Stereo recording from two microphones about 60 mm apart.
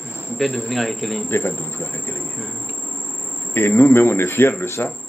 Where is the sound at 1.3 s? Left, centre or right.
Left.